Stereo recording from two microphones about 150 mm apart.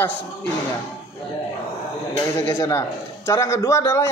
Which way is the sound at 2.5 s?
20° left (ahead or behind).